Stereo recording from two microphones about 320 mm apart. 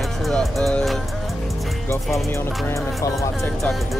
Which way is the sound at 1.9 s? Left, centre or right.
Centre.